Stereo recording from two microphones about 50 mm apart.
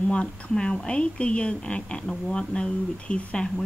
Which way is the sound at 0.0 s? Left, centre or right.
Left.